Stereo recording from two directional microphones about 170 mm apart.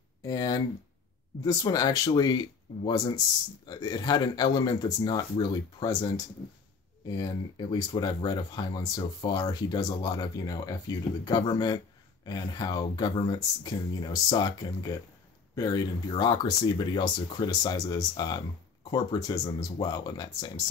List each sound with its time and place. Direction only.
0.2 s speech: 20° left (ahead or behind)